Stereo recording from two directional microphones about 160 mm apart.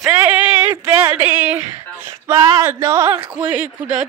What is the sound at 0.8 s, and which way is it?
Speech, 15° right (ahead or behind).